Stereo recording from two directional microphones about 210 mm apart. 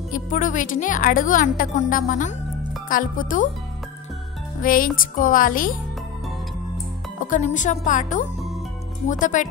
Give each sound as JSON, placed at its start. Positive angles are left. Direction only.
{"t": 0.1, "sound": "speech", "side_deg": 40}
{"t": 4.6, "sound": "speech", "side_deg": 40}
{"t": 7.2, "sound": "speech", "side_deg": 40}